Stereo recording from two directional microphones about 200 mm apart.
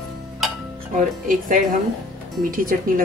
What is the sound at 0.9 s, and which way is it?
A woman's voice, 40° right (ahead or behind).